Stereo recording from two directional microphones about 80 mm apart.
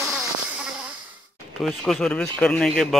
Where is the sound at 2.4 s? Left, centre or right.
Centre.